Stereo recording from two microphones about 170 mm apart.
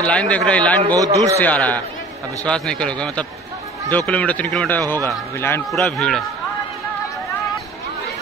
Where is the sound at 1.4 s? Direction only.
10° left (ahead or behind).